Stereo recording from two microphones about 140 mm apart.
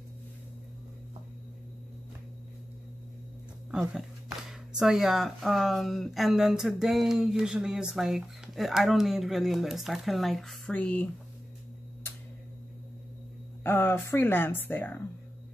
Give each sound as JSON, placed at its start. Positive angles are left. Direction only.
{"t": 3.9, "sound": "speech", "side_deg": -5}
{"t": 13.7, "sound": "speech", "side_deg": 15}